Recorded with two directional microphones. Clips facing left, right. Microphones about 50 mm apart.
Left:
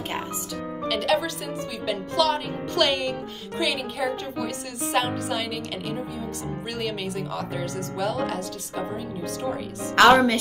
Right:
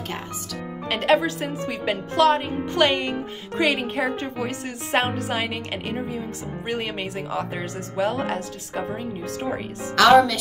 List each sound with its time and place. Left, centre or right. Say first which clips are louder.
0.8 s speech: right 4 dB; right
2.5 s speech: right 3 dB; right
3.5 s speech: right 5 dB; right
9.9 s a woman's voice: right 1 dB; left